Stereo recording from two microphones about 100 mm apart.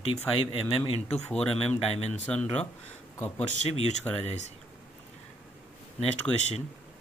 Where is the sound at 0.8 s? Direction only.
90° left.